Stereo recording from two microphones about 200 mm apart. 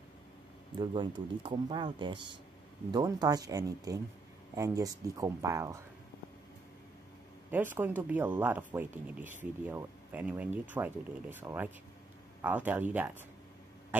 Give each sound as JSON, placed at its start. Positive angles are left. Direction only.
{"t": 0.7, "sound": "speech", "side_deg": -25}
{"t": 7.5, "sound": "speech", "side_deg": -10}